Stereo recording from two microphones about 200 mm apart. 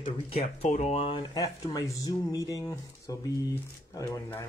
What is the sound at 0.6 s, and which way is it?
Speech, 35° left (ahead or behind).